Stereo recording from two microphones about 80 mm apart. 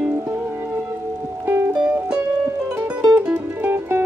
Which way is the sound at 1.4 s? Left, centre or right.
Right.